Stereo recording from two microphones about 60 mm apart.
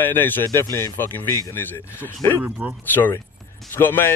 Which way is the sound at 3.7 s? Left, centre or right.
Left.